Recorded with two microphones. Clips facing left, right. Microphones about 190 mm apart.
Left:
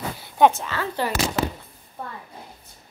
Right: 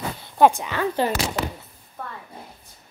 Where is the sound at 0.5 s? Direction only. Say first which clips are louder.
Right 3 dB; 15° right (ahead or behind).